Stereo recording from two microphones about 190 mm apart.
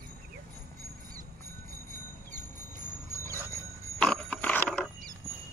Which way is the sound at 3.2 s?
15° right (ahead or behind).